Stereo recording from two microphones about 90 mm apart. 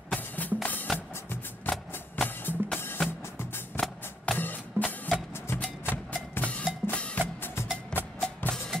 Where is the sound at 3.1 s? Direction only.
25° left (ahead or behind).